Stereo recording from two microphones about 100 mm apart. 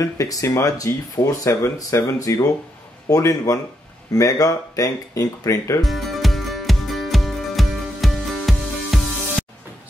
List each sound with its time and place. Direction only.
0.0 s speech: 35° left (ahead or behind)
5.8 s music: centre (ahead or behind)